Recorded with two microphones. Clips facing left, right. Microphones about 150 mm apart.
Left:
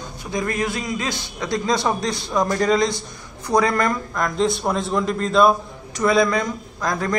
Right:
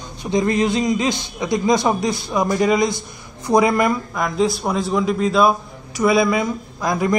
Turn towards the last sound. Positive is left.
turn(degrees=-10)  # may be behind; listen again after turning